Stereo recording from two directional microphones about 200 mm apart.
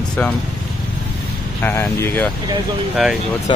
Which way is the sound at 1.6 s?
10° left (ahead or behind).